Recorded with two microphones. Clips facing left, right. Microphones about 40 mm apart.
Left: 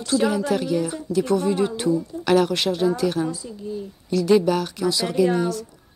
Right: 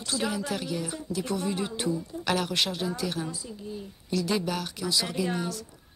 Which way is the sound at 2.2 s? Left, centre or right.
Left.